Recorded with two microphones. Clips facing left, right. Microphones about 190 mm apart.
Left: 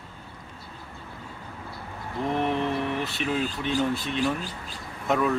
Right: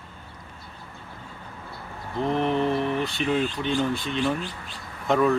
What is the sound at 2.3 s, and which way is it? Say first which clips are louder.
Mantra: right 3 dB; 35° right (ahead or behind).